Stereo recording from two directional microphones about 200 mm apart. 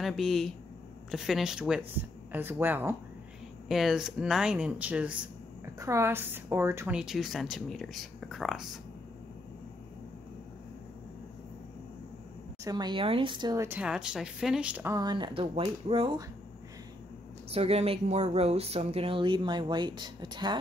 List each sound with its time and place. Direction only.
0.0 s speech: centre (ahead or behind)
7.0 s speech: centre (ahead or behind)
12.6 s speech: 20° right (ahead or behind)
17.5 s speech: 30° right (ahead or behind)